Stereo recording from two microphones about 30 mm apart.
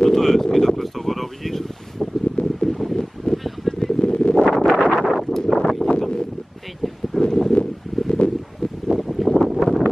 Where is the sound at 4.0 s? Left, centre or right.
Left.